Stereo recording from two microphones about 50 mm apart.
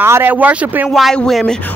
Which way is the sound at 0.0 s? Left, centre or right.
Right.